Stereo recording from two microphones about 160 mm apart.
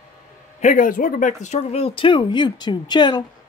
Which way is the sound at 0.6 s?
50° left (ahead or behind).